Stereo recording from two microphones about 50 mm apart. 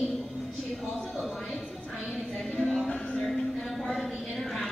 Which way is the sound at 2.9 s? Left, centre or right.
Left.